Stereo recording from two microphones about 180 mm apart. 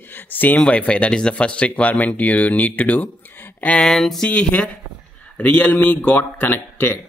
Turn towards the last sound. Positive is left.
turn(degrees=10)  # may be behind; listen again after turning